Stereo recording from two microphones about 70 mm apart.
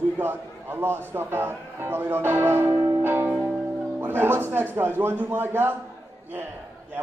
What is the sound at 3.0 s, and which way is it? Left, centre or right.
Music, right.